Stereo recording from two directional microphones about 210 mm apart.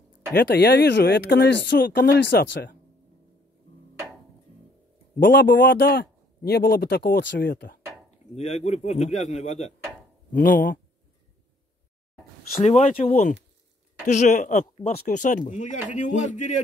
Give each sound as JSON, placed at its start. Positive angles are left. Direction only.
{"t": 0.3, "sound": "a man's voice", "side_deg": 50}
{"t": 5.2, "sound": "a man's voice", "side_deg": 45}
{"t": 8.4, "sound": "speech", "side_deg": 30}
{"t": 12.4, "sound": "speech", "side_deg": 35}